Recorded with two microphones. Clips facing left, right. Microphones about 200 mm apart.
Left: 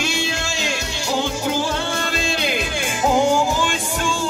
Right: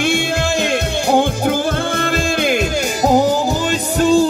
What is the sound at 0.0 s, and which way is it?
Music, 55° right (ahead or behind).